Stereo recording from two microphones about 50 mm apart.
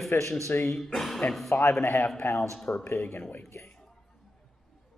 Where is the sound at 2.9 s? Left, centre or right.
Left.